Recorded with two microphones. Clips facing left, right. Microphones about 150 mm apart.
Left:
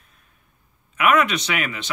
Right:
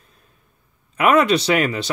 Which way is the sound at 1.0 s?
30° right (ahead or behind).